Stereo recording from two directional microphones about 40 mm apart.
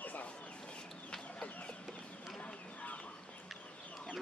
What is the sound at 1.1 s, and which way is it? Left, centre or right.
Chicken, left.